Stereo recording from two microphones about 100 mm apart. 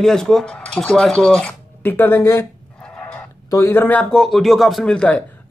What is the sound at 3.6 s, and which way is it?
Speech, 20° left (ahead or behind).